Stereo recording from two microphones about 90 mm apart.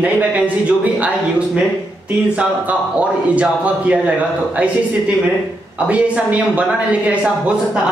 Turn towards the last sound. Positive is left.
turn(degrees=-15)  # may be behind; listen again after turning